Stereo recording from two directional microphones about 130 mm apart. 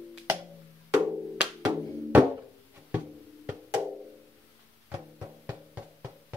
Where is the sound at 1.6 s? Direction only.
10° right (ahead or behind).